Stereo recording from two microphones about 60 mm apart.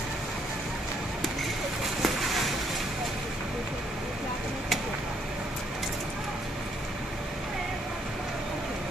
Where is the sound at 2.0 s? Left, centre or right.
Centre.